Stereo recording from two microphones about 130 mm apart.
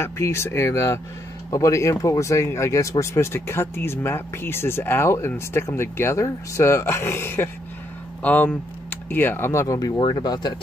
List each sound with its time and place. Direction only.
0.0 s speech: 20° left (ahead or behind)